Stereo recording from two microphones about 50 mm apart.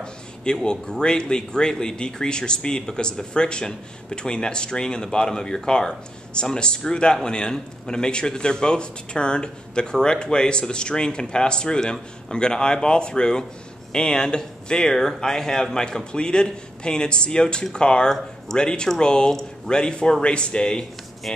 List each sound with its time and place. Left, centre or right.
0.0 s speech: centre